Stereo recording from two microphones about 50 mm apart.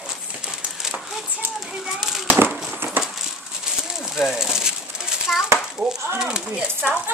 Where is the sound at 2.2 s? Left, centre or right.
Right.